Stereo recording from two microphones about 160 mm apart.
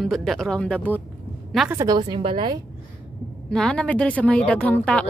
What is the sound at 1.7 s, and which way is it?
Speech, 25° right (ahead or behind).